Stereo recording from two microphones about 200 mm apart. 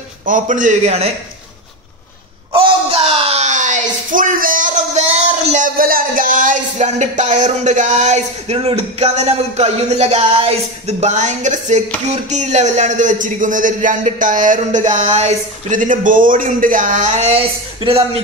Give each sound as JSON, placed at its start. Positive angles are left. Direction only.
{"t": 0.2, "sound": "speech", "side_deg": -40}
{"t": 2.5, "sound": "a sound", "side_deg": -30}
{"t": 12.3, "sound": "speech", "side_deg": -35}